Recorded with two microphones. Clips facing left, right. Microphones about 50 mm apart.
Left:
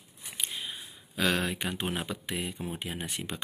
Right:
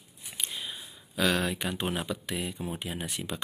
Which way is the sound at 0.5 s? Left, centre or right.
Centre.